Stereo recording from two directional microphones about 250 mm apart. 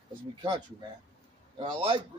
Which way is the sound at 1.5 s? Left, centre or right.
Right.